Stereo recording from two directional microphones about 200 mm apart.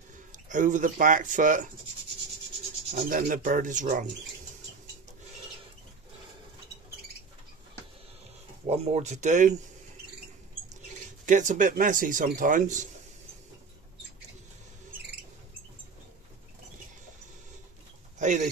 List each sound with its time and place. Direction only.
0.3 s speech: 40° right (ahead or behind)
2.9 s speech: 40° right (ahead or behind)
8.6 s speech: 30° right (ahead or behind)
11.2 s speech: 40° right (ahead or behind)
18.2 s speech: 35° right (ahead or behind)